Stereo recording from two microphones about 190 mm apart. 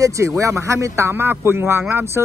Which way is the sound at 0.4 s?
15° right (ahead or behind).